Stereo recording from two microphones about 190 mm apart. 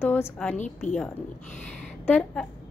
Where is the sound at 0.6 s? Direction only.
40° left (ahead or behind).